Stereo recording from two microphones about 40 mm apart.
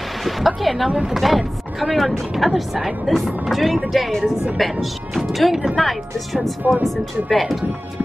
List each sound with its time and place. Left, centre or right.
0.6 s speech: centre
6.6 s speech: right
7.2 s speech: centre